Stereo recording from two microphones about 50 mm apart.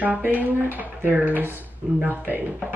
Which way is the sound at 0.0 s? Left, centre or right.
Right.